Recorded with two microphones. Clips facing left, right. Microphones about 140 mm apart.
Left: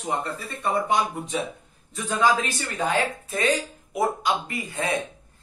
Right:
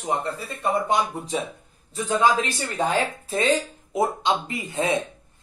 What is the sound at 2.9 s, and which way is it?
Speech, 30° right (ahead or behind).